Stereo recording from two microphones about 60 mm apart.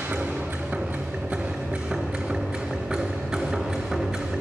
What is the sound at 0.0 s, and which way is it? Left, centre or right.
Music, right.